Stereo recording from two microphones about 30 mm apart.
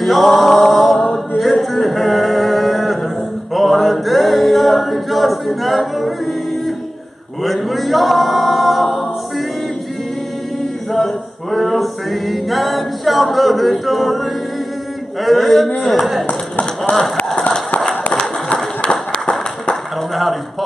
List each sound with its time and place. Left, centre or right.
0.0 s mantra: centre
1.4 s a sound: centre
3.5 s a capella: centre
7.4 s a capella: centre
11.5 s a capella: centre
15.2 s a man's voice: centre
16.3 s a sound: left